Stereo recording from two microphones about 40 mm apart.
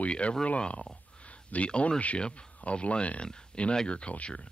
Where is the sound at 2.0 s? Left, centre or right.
Left.